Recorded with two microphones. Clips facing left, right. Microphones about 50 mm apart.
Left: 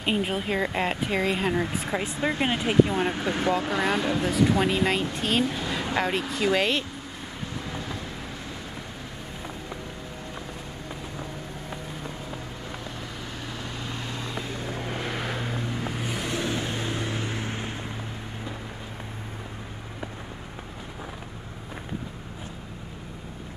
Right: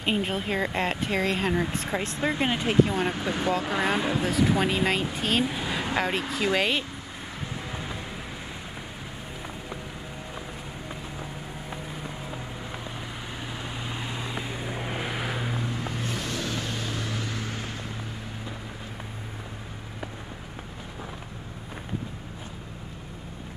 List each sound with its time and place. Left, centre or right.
0.0 s speech: centre
3.6 s speech: centre
13.8 s vehicle: centre
15.7 s vehicle: centre; by 17.7 s left